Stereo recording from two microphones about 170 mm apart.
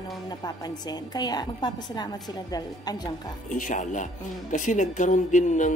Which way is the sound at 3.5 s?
50° left (ahead or behind).